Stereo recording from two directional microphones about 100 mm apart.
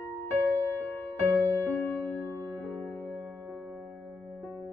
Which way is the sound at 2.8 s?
20° left (ahead or behind).